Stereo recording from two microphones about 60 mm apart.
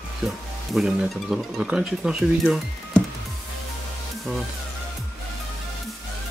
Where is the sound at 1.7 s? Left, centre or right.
Centre.